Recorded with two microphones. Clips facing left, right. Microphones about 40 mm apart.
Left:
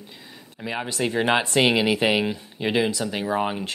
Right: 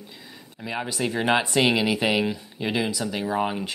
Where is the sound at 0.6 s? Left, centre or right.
Centre.